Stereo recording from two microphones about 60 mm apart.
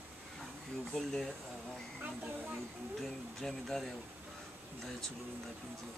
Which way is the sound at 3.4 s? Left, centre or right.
Centre.